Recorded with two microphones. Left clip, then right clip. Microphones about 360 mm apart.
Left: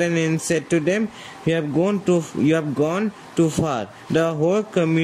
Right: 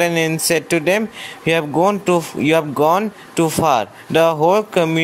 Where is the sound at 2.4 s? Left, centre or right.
Right.